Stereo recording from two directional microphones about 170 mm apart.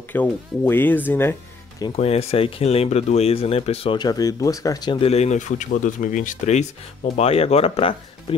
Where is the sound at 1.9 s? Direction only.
35° left (ahead or behind).